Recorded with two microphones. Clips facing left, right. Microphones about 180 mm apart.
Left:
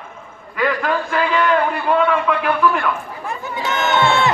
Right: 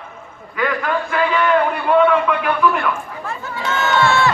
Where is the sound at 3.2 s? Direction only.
15° left (ahead or behind).